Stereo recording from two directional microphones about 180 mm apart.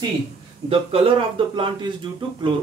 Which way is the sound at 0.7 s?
30° right (ahead or behind).